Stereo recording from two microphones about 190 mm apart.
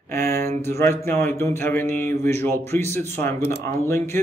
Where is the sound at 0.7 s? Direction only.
15° left (ahead or behind).